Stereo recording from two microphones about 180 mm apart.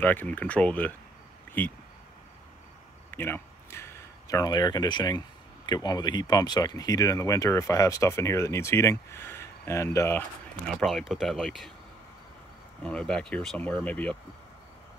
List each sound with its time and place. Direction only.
0.0 s speech: 10° left (ahead or behind)
3.1 s speech: 10° left (ahead or behind)
10.7 s speech: centre (ahead or behind)
12.8 s speech: 5° left (ahead or behind)